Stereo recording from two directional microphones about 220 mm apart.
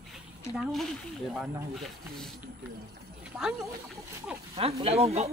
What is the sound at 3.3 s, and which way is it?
Speech, centre (ahead or behind).